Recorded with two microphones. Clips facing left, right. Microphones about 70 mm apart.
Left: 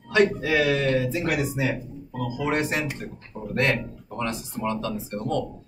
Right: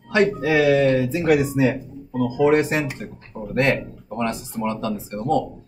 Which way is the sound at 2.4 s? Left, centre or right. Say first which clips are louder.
Right 8 dB; centre.